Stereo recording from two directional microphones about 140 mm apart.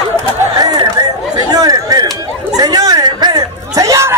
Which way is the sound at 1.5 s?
25° right (ahead or behind).